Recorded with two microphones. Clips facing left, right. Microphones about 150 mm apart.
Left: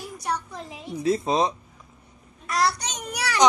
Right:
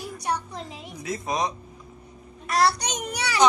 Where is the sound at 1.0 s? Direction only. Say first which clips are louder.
Left 6 dB; 30° left (ahead or behind).